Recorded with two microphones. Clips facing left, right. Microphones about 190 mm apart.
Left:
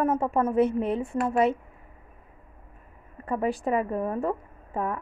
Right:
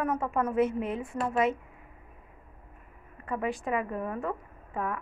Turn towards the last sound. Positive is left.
turn(degrees=35)  # may be behind; listen again after turning